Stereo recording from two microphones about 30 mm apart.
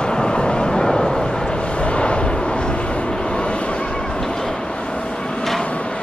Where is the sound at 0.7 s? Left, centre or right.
Centre.